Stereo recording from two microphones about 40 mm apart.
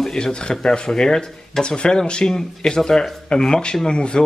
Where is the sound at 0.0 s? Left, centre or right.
Centre.